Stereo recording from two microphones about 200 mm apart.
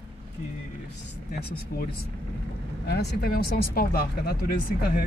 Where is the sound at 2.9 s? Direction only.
55° left (ahead or behind).